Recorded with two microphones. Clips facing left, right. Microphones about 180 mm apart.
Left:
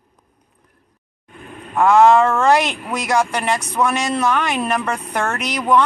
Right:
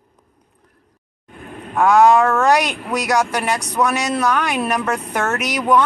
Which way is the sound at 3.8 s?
Centre (ahead or behind).